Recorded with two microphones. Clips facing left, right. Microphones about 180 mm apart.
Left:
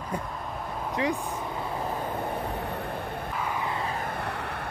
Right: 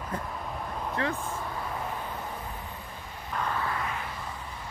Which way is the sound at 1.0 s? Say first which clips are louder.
Left 4 dB; 15° left (ahead or behind).